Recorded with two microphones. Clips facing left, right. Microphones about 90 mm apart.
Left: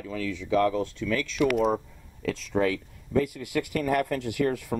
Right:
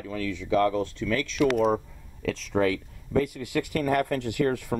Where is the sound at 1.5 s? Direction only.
5° right (ahead or behind).